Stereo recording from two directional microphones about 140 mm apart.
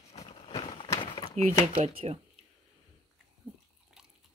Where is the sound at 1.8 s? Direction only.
45° right (ahead or behind).